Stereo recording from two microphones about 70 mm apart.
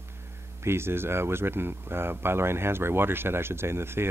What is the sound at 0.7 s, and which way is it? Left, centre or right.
Speech, right.